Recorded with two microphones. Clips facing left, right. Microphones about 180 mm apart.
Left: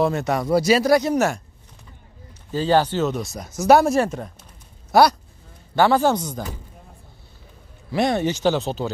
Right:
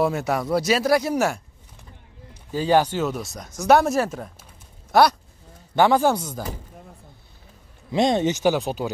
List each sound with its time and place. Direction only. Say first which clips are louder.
0.0 s speech: left 1 dB; 5° right (ahead or behind)
2.5 s speech: left 1 dB; 15° right (ahead or behind)
3.3 s speech: left 2 dB; 5° left (ahead or behind)
5.8 s speech: left 1 dB; 15° right (ahead or behind)
7.9 s speech: right 1 dB; 20° right (ahead or behind)